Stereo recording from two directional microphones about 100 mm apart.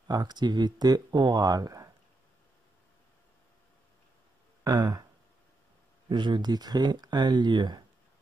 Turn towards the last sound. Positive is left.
turn(degrees=-50)  # may be behind; listen again after turning